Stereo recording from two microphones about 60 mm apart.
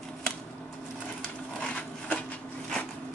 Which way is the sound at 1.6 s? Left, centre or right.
Centre.